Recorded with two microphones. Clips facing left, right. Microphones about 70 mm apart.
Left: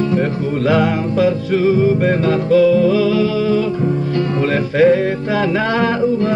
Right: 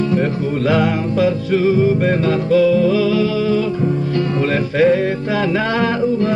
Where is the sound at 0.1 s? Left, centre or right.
Left.